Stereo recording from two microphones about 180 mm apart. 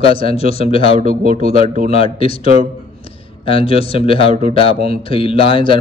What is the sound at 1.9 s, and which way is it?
Speech, 30° left (ahead or behind).